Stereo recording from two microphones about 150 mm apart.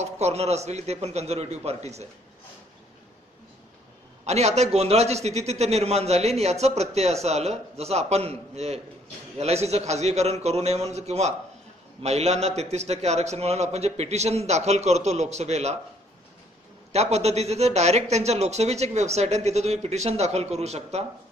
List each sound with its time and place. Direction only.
0.0 s a man's voice: 45° right (ahead or behind)
4.3 s a man's voice: 45° right (ahead or behind)
16.9 s a man's voice: 45° right (ahead or behind)